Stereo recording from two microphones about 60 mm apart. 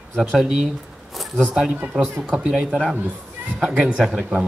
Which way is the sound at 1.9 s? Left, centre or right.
Centre.